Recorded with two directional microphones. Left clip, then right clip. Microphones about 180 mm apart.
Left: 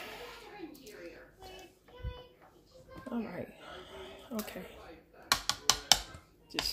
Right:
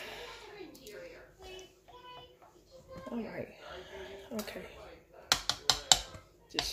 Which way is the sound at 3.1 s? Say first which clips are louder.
Left 1 dB; 20° left (ahead or behind).